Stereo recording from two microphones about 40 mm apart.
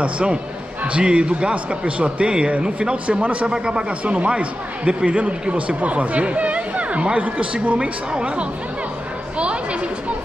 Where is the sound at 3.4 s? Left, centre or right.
Right.